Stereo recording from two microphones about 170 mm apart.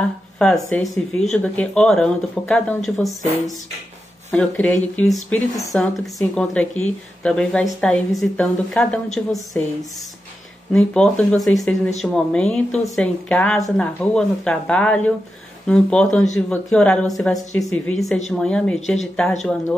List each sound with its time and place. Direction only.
0.4 s speech: 5° left (ahead or behind)
4.3 s a woman's voice: 10° left (ahead or behind)
10.7 s a woman's voice: 5° left (ahead or behind)